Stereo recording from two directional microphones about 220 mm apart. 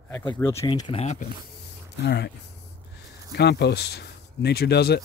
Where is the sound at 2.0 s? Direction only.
50° left (ahead or behind).